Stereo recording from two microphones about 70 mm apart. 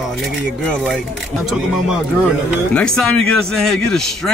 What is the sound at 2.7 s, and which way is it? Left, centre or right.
Speech, centre.